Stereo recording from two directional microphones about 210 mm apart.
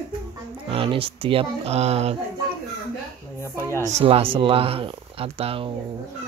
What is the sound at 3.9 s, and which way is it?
Speech, 25° right (ahead or behind).